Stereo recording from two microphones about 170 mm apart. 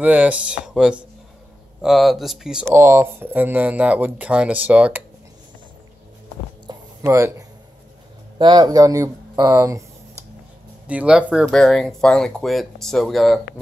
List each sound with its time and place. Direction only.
0.0 s speech: 10° right (ahead or behind)
6.7 s a sound: 20° right (ahead or behind)
8.4 s speech: 25° right (ahead or behind)
10.9 s speech: 5° right (ahead or behind)